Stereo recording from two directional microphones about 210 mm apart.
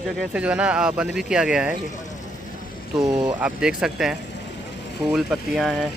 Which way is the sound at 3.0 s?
20° right (ahead or behind).